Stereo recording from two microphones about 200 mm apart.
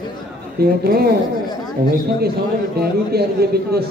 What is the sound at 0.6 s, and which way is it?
Speech, 50° right (ahead or behind).